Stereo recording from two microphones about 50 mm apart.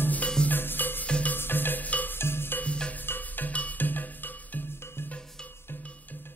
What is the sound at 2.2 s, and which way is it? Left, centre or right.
Music, left.